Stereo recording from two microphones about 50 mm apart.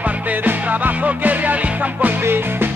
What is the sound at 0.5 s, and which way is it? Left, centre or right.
Music, right.